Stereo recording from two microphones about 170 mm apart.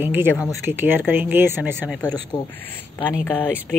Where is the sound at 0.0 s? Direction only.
10° right (ahead or behind).